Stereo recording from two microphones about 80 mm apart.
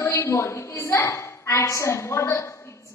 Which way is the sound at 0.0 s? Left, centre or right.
Left.